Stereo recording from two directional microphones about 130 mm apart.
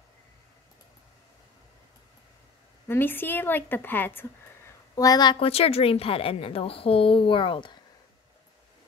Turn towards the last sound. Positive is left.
turn(degrees=40)  # may be behind; listen again after turning